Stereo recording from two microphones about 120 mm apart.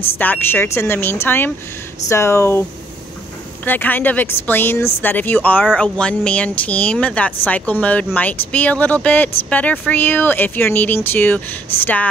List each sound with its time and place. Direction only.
0.2 s speech: 15° left (ahead or behind)
3.6 s speech: 15° left (ahead or behind)